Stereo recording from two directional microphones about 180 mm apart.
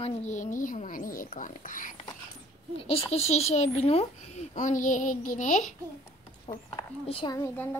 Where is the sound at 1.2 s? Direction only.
45° left (ahead or behind).